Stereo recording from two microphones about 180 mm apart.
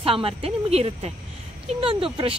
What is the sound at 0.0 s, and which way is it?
Speech, 30° right (ahead or behind).